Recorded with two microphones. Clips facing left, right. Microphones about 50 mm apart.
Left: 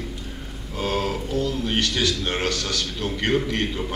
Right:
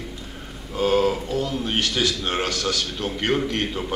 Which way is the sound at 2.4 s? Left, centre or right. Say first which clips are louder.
Right 1 dB; right.